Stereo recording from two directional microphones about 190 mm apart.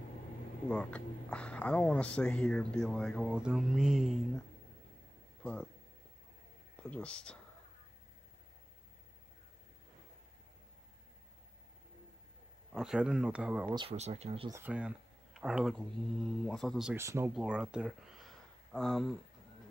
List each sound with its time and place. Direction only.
0.7 s speech: 5° left (ahead or behind)
5.4 s speech: 5° left (ahead or behind)
6.8 s speech: 5° left (ahead or behind)
12.7 s speech: 5° right (ahead or behind)
13.7 s speech: 35° right (ahead or behind)
14.5 s speech: 10° right (ahead or behind)
16.9 s speech: 15° right (ahead or behind); by 19.1 s centre (ahead or behind)